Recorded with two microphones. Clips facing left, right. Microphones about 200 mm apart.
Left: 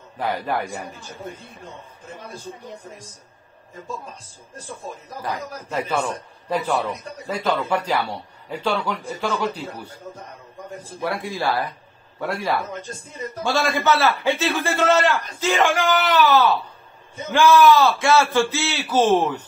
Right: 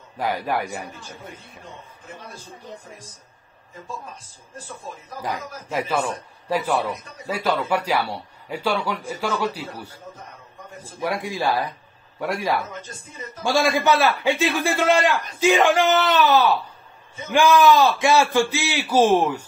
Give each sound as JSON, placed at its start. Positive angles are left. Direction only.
{"t": 0.2, "sound": "a man's voice", "side_deg": -10}
{"t": 5.2, "sound": "a man's voice", "side_deg": -10}
{"t": 11.0, "sound": "a man's voice", "side_deg": -15}